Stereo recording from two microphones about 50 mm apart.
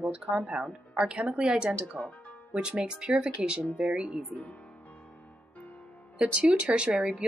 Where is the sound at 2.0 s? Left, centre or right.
Centre.